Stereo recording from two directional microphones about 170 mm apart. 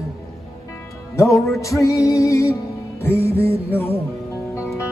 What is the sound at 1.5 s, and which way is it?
Music, 20° left (ahead or behind).